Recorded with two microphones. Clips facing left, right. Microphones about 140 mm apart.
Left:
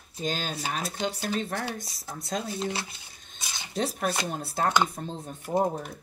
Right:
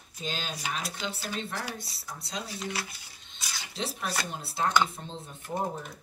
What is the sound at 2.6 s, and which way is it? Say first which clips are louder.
Speech: left 4 dB; 25° left (ahead or behind).